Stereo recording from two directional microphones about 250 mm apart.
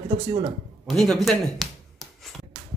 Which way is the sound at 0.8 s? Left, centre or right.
Centre.